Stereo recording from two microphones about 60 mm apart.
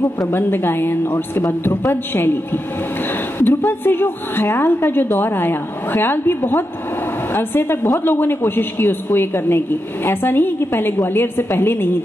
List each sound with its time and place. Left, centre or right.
0.3 s a woman's voice: left